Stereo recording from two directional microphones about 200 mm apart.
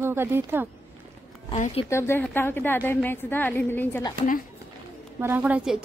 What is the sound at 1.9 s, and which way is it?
A woman's voice, 10° left (ahead or behind).